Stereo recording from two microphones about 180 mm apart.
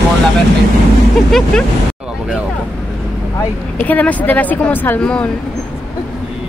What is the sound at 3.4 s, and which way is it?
Speech, 10° left (ahead or behind).